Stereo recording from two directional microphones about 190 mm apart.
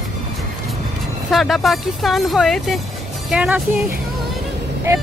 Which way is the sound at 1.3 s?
Centre (ahead or behind).